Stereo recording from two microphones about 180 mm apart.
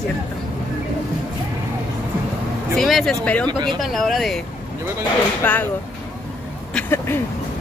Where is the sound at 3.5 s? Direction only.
25° right (ahead or behind).